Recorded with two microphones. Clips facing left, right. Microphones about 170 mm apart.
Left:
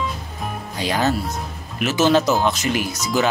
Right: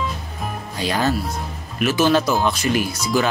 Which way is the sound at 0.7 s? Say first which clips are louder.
Even; 15° left (ahead or behind).